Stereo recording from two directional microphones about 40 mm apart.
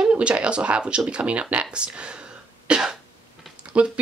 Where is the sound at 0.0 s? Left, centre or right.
Right.